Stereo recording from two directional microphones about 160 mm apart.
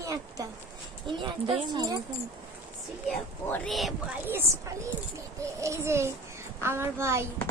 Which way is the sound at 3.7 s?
Centre (ahead or behind).